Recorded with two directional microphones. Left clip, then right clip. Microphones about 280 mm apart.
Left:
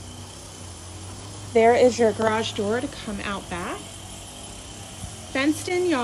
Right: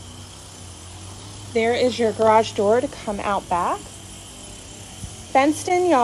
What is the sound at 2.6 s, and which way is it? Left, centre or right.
A woman's voice, right.